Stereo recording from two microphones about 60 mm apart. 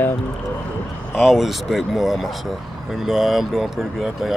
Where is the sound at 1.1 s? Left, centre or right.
Centre.